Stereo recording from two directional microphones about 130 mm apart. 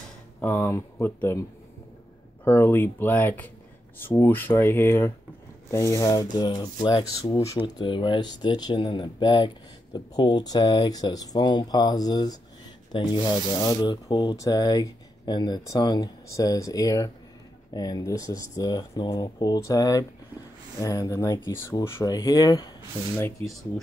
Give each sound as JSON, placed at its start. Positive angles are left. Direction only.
{"t": 0.4, "sound": "speech", "side_deg": 15}
{"t": 2.4, "sound": "speech", "side_deg": 15}